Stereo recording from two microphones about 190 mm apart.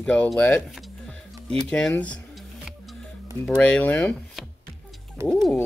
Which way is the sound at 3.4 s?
5° left (ahead or behind).